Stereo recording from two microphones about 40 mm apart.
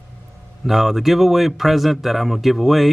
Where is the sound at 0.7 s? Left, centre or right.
Centre.